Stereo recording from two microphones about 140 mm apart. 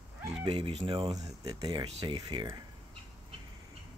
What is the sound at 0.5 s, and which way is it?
Speech, 40° right (ahead or behind).